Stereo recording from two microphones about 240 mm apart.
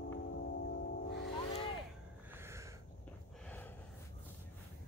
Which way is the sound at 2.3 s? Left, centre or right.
Centre.